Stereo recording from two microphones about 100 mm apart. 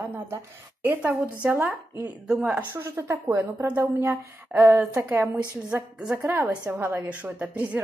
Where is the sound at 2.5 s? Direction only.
25° right (ahead or behind).